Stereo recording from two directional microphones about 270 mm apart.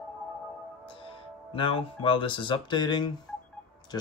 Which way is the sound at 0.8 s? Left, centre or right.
Centre.